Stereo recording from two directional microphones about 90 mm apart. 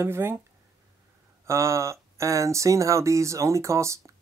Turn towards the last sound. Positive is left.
turn(degrees=-35)  # may be behind; listen again after turning